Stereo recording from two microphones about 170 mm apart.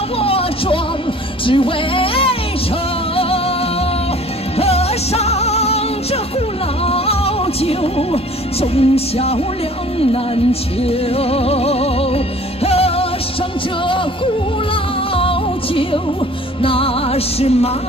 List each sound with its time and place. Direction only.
0.2 s music: 35° left (ahead or behind)
4.6 s music: 35° left (ahead or behind)
6.8 s speech: 35° left (ahead or behind)
9.9 s music: 35° left (ahead or behind)